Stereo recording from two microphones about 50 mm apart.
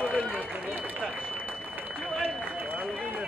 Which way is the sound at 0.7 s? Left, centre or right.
Right.